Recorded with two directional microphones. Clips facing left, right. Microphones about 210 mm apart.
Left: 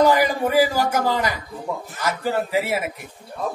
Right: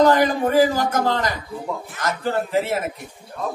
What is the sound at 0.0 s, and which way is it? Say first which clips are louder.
A man's voice: right 1 dB; 10° left (ahead or behind).